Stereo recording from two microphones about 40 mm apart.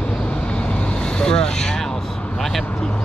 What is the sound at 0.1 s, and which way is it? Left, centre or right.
Vehicle, left.